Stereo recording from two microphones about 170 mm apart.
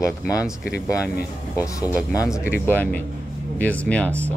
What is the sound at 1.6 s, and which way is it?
Speech, 20° left (ahead or behind).